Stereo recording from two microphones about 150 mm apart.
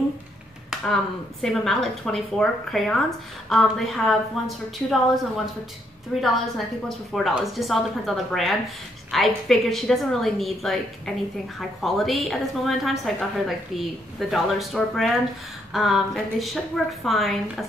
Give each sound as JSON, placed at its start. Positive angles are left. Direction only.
{"t": 1.4, "sound": "a woman's voice", "side_deg": 5}
{"t": 6.2, "sound": "a woman's voice", "side_deg": 0}